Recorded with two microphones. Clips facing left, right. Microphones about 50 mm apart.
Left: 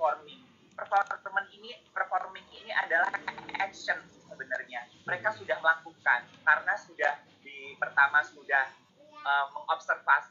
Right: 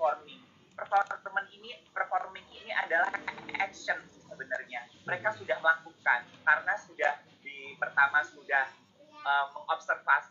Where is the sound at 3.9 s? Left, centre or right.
Centre.